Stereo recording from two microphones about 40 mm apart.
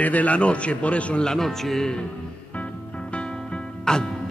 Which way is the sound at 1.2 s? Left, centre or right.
Centre.